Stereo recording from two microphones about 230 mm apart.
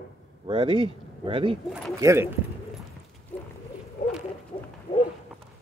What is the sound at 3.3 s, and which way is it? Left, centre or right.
Clip-clop, centre.